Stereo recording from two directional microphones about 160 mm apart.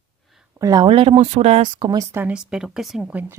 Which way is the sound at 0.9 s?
35° right (ahead or behind).